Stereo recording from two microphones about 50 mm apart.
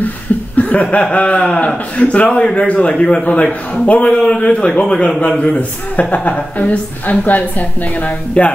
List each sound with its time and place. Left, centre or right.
0.6 s chuckle: left
1.1 s a man's voice: left